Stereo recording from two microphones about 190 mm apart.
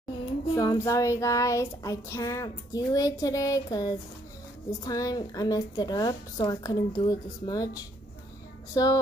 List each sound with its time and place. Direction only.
0.6 s child singing: 15° left (ahead or behind)
4.6 s a woman's voice: 20° left (ahead or behind)